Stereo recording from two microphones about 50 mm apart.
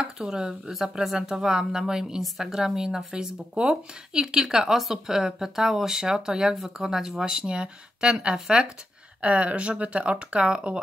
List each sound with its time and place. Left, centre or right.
0.0 s speech: centre
9.2 s speech: right